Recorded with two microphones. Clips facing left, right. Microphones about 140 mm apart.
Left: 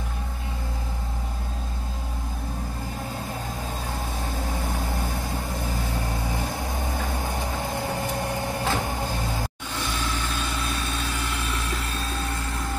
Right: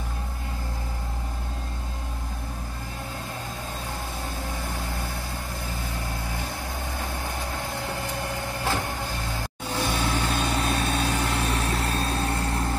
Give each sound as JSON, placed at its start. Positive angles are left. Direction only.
{"t": 7.7, "sound": "vehicle", "side_deg": 10}
{"t": 9.8, "sound": "vehicle", "side_deg": -50}